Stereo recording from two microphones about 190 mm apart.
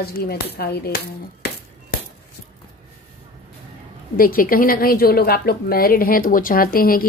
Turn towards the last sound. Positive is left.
turn(degrees=50)  # may be behind; listen again after turning